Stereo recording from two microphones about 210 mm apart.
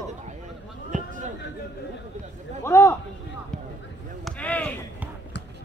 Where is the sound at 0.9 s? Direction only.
35° right (ahead or behind).